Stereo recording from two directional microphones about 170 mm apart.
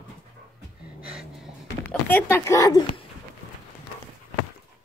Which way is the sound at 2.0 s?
10° left (ahead or behind).